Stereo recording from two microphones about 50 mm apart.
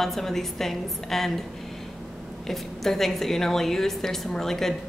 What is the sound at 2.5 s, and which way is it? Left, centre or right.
A woman's voice, centre.